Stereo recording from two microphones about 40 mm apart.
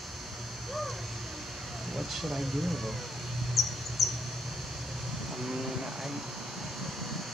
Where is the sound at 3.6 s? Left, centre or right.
Centre.